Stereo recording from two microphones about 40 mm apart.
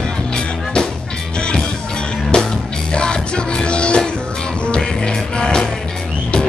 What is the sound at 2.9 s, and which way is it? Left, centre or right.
Music, left.